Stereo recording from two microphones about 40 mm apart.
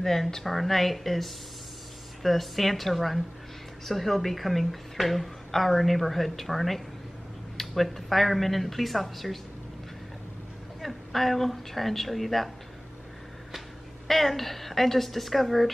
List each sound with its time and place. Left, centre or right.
0.0 s a woman's voice: centre
10.8 s a woman's voice: centre
14.0 s a woman's voice: centre